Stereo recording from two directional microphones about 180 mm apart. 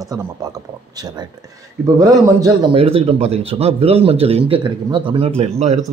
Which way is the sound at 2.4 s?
30° right (ahead or behind).